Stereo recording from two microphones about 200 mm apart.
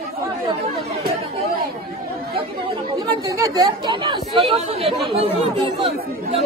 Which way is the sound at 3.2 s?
15° right (ahead or behind).